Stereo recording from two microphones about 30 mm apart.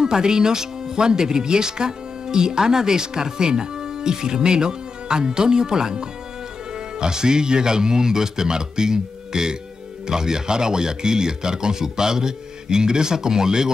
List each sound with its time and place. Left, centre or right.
0.0 s speech: right